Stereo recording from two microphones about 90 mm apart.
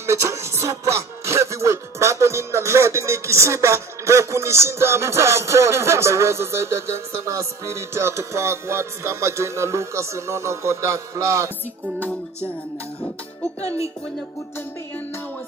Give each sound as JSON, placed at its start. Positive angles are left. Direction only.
{"t": 0.0, "sound": "music", "side_deg": -35}